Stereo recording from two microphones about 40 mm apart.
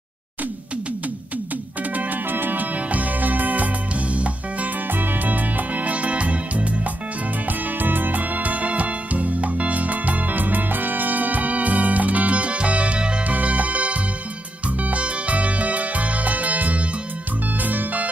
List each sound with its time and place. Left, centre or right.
2.0 s music: right
4.8 s music: right
7.4 s music: right